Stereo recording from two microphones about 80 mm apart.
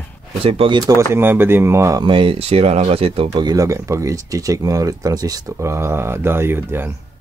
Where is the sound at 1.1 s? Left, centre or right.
Right.